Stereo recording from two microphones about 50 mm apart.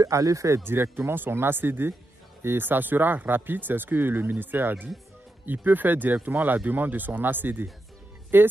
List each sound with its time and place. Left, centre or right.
0.1 s speech: right
0.8 s speech: right